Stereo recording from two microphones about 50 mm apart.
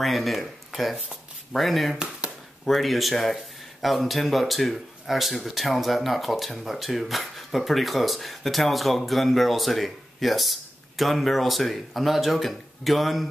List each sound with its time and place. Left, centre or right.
0.0 s speech: centre
2.0 s a sound: centre
2.6 s speech: centre